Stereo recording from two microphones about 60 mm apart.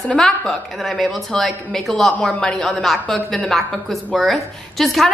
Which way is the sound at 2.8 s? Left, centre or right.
Centre.